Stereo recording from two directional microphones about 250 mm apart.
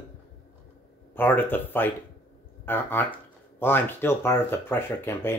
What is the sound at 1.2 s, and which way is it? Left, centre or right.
Speech, centre.